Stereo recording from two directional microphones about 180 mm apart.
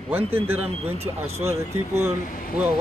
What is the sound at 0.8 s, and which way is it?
Speech, 35° right (ahead or behind).